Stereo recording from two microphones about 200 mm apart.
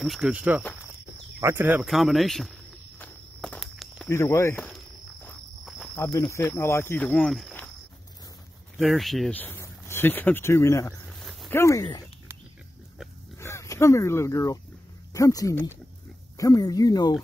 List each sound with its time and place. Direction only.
0.0 s speech: centre (ahead or behind)
3.1 s walk: 5° left (ahead or behind)
4.1 s insect: 15° left (ahead or behind)
5.9 s speech: 10° left (ahead or behind)
8.7 s speech: centre (ahead or behind)
11.1 s a sound: centre (ahead or behind)
11.5 s speech: 15° left (ahead or behind)
13.4 s speech: 15° left (ahead or behind)